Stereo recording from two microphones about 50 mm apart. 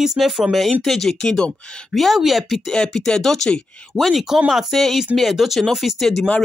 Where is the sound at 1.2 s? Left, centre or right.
Centre.